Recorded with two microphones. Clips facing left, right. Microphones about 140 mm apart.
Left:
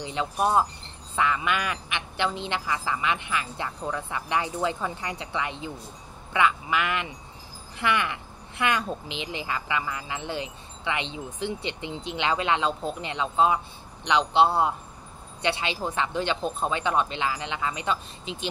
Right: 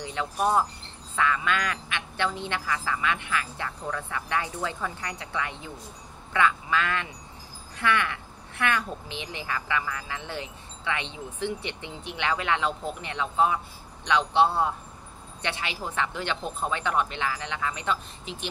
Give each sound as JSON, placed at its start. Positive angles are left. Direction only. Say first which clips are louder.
{"t": 0.0, "sound": "a woman's voice", "louder": "left 1 dB", "side_deg": 20}